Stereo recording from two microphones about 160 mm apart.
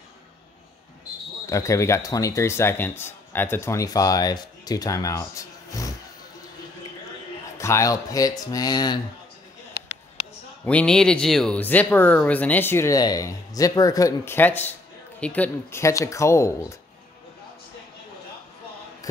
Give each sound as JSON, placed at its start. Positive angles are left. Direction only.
{"t": 1.5, "sound": "a man's voice", "side_deg": 20}
{"t": 7.5, "sound": "a man's voice", "side_deg": 20}
{"t": 10.6, "sound": "speech", "side_deg": 10}